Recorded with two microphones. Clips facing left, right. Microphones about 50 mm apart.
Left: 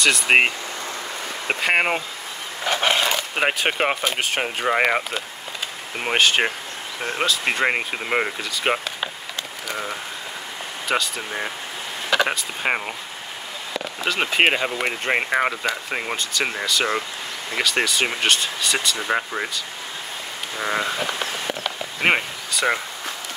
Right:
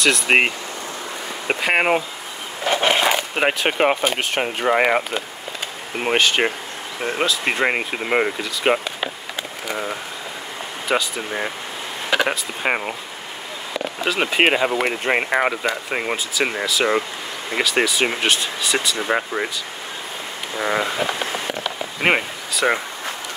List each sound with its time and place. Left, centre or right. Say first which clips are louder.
0.0 s speech: even; centre
1.5 s speech: right 2 dB; centre
2.6 s wild animals: right 2 dB; centre
3.0 s a sound: right 3 dB; centre
3.3 s speech: left 1 dB; centre
14.0 s speech: right 1 dB; centre
20.5 s speech: right 2 dB; centre
21.0 s a sound: right 3 dB; right
21.5 s a sound: right 1 dB; centre